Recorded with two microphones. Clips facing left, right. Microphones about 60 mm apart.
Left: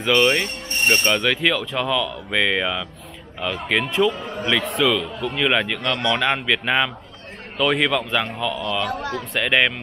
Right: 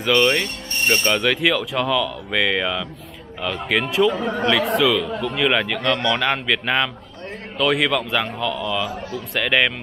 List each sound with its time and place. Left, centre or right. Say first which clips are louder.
0.1 s speech: even; centre
4.1 s a man's voice: right 6 dB; right
4.5 s speech: right 1 dB; centre
5.9 s speech: right 3 dB; centre
6.1 s speech: even; centre
8.9 s speech: left 3 dB; left
9.3 s speech: even; centre